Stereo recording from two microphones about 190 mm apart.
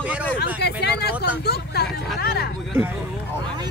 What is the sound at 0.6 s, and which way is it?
Speech, 60° left (ahead or behind).